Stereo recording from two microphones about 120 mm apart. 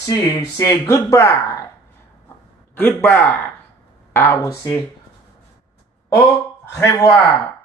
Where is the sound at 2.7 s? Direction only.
15° left (ahead or behind).